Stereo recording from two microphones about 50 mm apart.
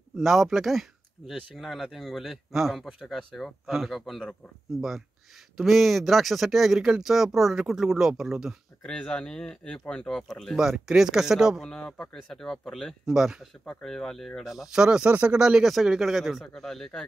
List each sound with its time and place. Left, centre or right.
0.2 s speech: centre
8.8 s speech: centre
10.6 s speech: centre
11.6 s speech: centre
13.0 s speech: centre
13.7 s speech: centre
15.0 s speech: right
15.3 s speech: centre
15.6 s speech: centre